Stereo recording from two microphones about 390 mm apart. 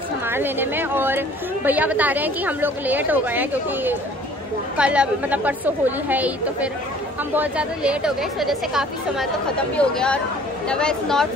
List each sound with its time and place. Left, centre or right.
0.3 s a woman's voice: centre